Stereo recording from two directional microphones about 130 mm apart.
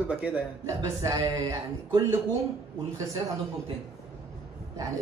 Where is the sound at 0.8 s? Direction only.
25° right (ahead or behind).